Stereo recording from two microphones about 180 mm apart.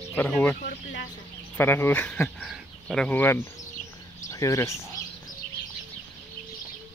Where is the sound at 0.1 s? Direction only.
10° left (ahead or behind).